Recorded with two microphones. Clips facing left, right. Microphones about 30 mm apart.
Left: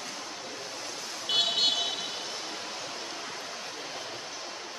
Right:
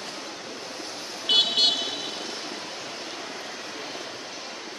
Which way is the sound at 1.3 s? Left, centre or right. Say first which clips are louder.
Right 5 dB; right.